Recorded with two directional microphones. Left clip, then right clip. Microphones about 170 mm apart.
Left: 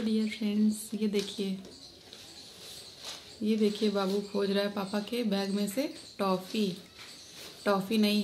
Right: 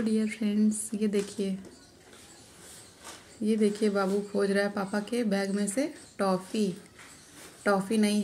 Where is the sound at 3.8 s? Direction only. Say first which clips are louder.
Right 2 dB; 15° right (ahead or behind).